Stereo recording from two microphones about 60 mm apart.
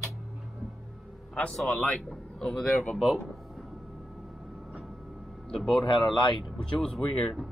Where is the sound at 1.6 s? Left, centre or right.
Centre.